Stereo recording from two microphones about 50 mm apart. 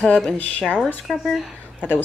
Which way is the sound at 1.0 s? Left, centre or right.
Centre.